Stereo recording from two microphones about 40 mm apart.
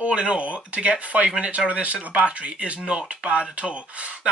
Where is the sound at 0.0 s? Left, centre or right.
Right.